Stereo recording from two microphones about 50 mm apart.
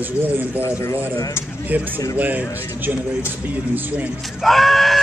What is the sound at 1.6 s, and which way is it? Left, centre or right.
Speech, right.